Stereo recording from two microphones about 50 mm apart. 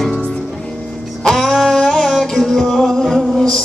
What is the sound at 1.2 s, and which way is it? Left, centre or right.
Music, centre.